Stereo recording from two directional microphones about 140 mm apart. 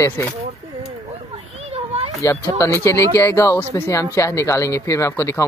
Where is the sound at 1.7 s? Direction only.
45° right (ahead or behind).